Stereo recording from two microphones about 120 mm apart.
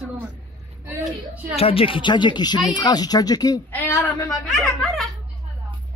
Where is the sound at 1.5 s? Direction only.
50° left (ahead or behind); by 3.6 s 30° left (ahead or behind).